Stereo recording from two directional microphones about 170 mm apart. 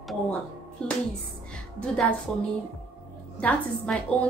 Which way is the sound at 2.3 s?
5° left (ahead or behind).